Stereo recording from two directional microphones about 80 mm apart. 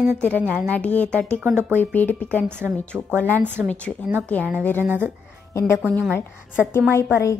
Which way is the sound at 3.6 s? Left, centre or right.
Right.